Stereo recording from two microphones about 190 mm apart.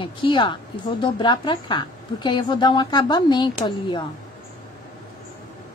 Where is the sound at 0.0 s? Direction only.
25° left (ahead or behind).